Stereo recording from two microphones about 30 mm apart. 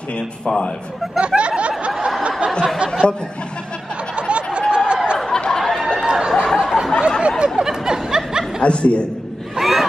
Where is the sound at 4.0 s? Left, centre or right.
Right.